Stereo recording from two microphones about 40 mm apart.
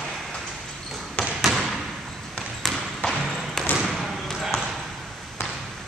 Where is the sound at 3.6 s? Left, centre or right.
Centre.